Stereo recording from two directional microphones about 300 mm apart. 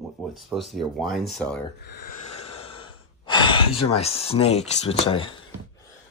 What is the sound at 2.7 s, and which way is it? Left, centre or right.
Speech, centre.